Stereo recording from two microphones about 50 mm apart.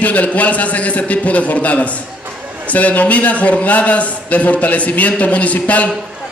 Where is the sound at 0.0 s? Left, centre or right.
Left.